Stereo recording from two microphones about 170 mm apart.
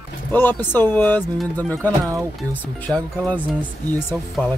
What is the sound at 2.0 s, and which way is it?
Speech, 20° right (ahead or behind).